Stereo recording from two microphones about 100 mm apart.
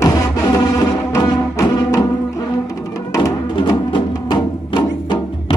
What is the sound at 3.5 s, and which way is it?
Music, 50° left (ahead or behind).